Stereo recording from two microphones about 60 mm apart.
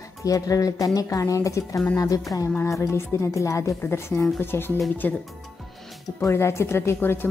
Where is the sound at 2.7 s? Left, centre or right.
Left.